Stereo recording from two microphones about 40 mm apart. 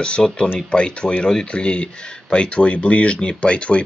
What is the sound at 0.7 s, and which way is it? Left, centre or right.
Speech, left.